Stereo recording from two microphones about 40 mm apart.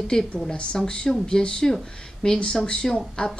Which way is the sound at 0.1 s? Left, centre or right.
Centre.